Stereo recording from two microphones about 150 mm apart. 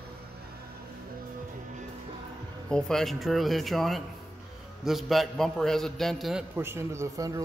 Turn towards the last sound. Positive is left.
turn(degrees=-20)  # may be behind; listen again after turning